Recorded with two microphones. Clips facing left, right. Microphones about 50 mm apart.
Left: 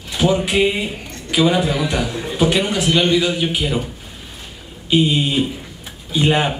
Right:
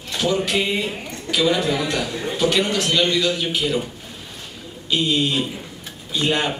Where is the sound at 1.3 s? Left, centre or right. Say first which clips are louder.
Left 3 dB; centre.